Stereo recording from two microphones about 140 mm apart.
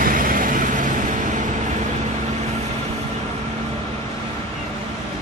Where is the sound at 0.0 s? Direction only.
80° right.